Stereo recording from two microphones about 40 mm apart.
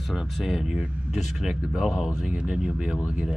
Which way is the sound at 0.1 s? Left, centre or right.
Centre.